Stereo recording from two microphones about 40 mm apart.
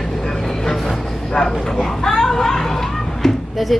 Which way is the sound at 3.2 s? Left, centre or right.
Centre.